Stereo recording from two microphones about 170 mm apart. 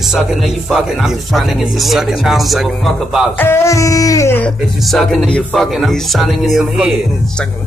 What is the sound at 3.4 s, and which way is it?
Music, 15° left (ahead or behind).